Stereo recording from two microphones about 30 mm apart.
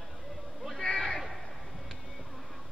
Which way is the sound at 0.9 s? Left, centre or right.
Left.